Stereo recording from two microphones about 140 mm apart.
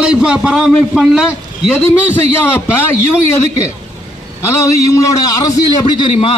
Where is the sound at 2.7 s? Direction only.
20° left (ahead or behind).